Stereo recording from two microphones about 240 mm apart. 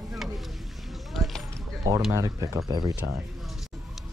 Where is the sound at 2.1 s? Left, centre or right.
Centre.